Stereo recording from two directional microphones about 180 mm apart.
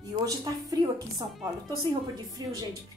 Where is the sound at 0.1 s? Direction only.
20° right (ahead or behind).